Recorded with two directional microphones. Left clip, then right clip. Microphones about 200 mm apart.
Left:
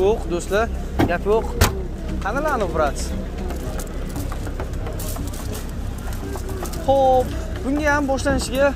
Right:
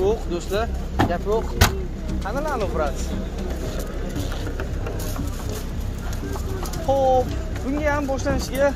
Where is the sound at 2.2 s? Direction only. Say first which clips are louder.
Left 4 dB; 25° left (ahead or behind).